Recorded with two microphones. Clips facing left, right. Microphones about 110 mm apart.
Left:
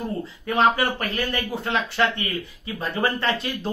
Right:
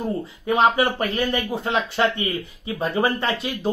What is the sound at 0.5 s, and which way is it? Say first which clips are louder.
Speech: right 2 dB; 20° right (ahead or behind).